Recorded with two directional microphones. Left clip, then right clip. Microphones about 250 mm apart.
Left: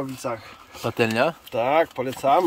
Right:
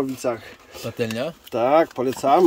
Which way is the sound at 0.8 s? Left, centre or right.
Centre.